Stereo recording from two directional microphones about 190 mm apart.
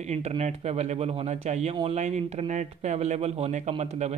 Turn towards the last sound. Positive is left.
turn(degrees=-35)  # may be behind; listen again after turning